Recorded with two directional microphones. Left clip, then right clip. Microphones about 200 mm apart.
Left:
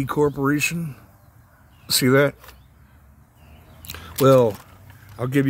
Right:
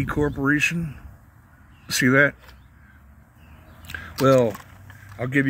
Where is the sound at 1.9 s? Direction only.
15° left (ahead or behind).